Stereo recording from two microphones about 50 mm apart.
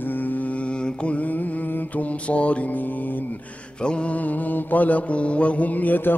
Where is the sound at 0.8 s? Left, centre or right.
Left.